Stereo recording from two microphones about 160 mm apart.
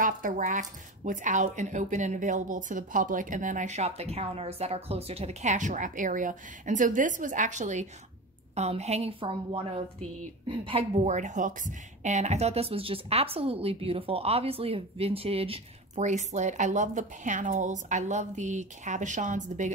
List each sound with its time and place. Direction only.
0.0 s a woman's voice: 55° right (ahead or behind); by 10.9 s 35° right (ahead or behind)
11.1 s a woman's voice: 50° right (ahead or behind)